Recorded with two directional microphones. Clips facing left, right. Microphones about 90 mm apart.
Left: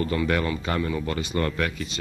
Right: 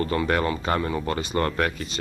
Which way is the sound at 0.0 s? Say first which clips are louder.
Right 1 dB; 40° right (ahead or behind).